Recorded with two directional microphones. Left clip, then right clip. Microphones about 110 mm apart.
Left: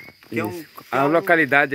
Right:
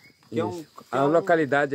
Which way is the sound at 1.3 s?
35° left (ahead or behind).